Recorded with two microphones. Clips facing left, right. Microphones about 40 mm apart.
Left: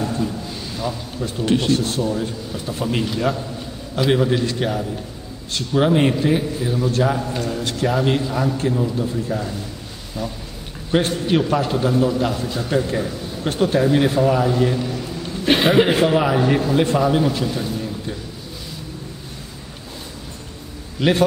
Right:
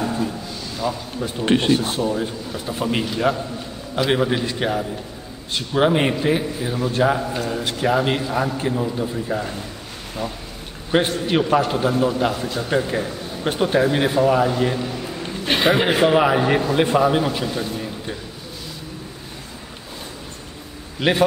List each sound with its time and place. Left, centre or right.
0.0 s a sound: centre
1.4 s speech: right
1.7 s a man's voice: centre
10.9 s a man's voice: centre
15.4 s a man's voice: centre
16.1 s a man's voice: centre
21.0 s a man's voice: centre